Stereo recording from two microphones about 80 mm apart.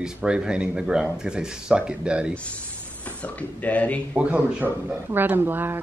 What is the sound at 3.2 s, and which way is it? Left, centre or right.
Speech, centre.